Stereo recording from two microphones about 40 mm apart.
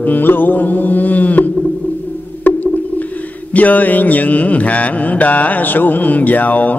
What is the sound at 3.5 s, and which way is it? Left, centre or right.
Mantra, left.